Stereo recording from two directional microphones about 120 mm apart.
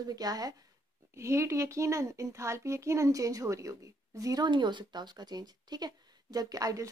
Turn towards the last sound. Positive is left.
turn(degrees=-30)  # may be behind; listen again after turning